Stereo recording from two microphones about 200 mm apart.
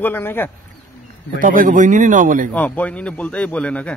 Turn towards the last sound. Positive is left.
turn(degrees=5)  # may be behind; listen again after turning